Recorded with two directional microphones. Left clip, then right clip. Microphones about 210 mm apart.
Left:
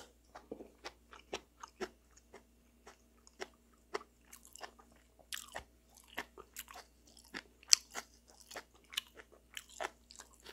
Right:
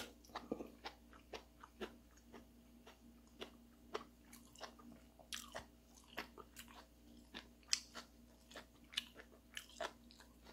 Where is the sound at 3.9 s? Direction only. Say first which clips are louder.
Left 5 dB; 35° left (ahead or behind).